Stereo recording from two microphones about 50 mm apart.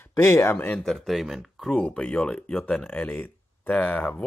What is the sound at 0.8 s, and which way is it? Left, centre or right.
Speech, centre.